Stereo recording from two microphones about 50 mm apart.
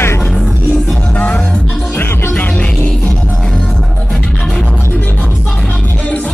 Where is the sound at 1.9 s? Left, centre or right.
Left.